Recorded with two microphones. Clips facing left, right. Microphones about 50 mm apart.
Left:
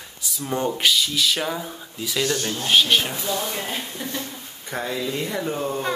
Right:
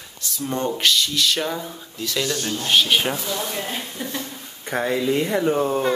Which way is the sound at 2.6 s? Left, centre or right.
Centre.